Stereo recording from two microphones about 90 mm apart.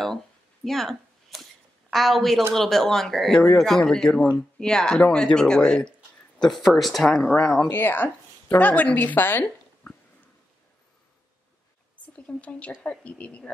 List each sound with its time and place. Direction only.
0.7 s a sound: centre (ahead or behind)
2.5 s speech: 5° left (ahead or behind)
7.7 s speech: 25° left (ahead or behind)
12.2 s speech: 15° left (ahead or behind)